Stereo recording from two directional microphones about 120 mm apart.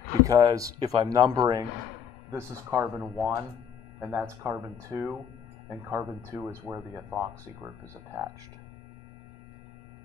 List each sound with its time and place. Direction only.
0.2 s a man's voice: 30° right (ahead or behind)